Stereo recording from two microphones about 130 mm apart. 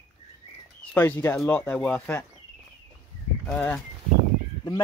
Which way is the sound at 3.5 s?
15° left (ahead or behind).